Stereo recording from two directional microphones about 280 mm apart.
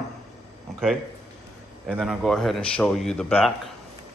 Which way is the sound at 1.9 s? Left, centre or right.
Centre.